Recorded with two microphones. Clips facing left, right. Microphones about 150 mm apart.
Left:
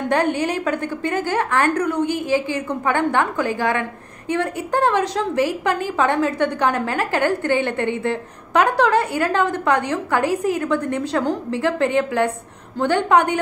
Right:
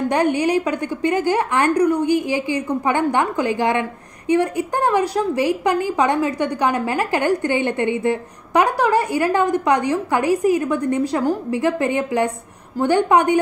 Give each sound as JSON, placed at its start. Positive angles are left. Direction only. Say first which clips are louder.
{"t": 0.1, "sound": "a woman's voice", "louder": "right 1 dB", "side_deg": -15}